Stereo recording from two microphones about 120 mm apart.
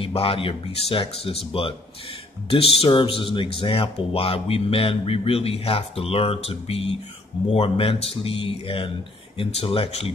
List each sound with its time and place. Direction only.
0.0 s speech: 50° left (ahead or behind)